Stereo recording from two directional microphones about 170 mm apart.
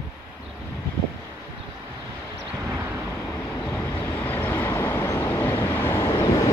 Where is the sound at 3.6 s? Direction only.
10° left (ahead or behind).